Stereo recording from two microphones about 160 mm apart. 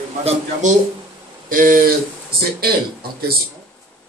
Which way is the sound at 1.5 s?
60° right (ahead or behind).